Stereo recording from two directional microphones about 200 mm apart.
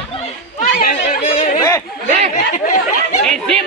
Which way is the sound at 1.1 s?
40° left (ahead or behind).